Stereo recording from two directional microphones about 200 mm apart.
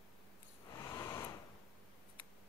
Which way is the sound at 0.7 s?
20° left (ahead or behind).